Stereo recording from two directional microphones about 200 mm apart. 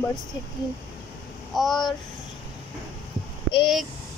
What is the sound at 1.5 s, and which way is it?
Speech, centre (ahead or behind).